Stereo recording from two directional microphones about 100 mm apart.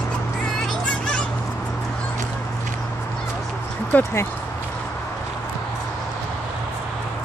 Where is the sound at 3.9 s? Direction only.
25° left (ahead or behind).